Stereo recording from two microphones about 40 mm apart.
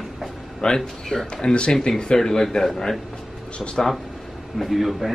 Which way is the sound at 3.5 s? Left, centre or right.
Left.